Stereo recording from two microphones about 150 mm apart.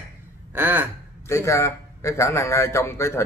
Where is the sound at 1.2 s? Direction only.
20° left (ahead or behind).